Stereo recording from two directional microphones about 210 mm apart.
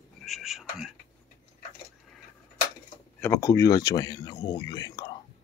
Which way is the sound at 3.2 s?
15° left (ahead or behind).